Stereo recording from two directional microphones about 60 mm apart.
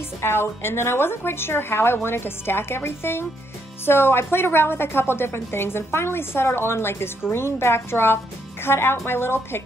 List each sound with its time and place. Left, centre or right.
0.2 s a woman's voice: left